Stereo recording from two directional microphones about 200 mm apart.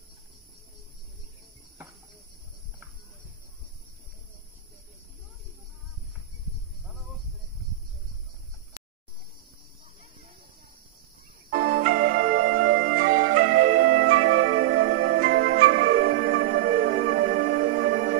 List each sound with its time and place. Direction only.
11.5 s music: 45° right (ahead or behind)
11.8 s music: 90° right
12.2 s music: 50° right (ahead or behind)
13.1 s music: 90° right
15.0 s music: 40° right (ahead or behind)